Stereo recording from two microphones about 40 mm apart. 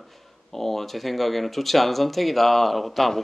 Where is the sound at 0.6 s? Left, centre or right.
Centre.